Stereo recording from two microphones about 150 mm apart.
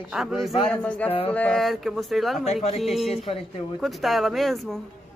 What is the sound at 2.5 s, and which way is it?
Speech, 45° left (ahead or behind).